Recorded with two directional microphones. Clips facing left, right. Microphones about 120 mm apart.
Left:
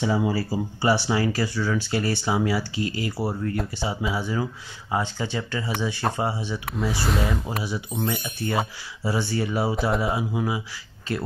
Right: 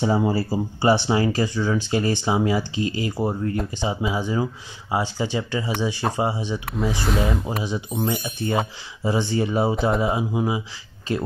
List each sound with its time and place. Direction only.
0.0 s speech: 35° right (ahead or behind); by 6.6 s 15° right (ahead or behind)
6.6 s speech: centre (ahead or behind)
7.6 s speech: 20° right (ahead or behind)
9.8 s speech: centre (ahead or behind)
10.1 s speech: 20° right (ahead or behind)